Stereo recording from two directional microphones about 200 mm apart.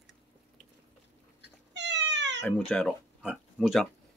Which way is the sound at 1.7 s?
60° right (ahead or behind).